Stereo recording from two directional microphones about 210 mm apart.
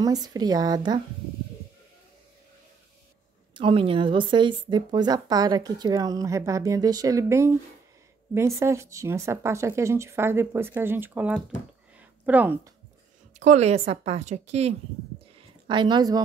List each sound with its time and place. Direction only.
0.0 s speech: 15° right (ahead or behind)
3.5 s speech: 25° right (ahead or behind); by 12.7 s 10° right (ahead or behind)
13.3 s a woman's voice: 35° right (ahead or behind)
15.3 s a sound: 25° right (ahead or behind)